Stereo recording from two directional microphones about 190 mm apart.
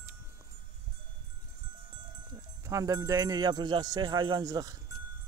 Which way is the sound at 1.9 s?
20° right (ahead or behind).